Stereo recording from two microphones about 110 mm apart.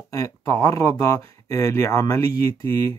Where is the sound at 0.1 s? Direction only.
30° left (ahead or behind).